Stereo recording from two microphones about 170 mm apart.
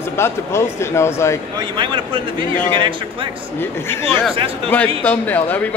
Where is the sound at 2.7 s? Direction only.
30° right (ahead or behind).